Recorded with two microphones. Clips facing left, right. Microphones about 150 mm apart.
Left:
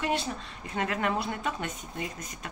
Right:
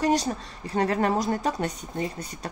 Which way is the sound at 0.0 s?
40° right (ahead or behind).